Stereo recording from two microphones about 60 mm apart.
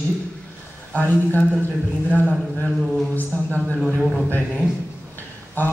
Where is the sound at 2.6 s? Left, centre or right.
Centre.